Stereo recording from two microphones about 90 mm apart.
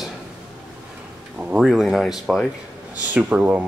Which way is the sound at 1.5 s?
5° right (ahead or behind).